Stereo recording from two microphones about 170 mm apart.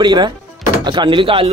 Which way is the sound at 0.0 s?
25° right (ahead or behind).